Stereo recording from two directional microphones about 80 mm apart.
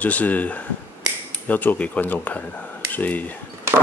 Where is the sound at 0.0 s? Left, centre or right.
Centre.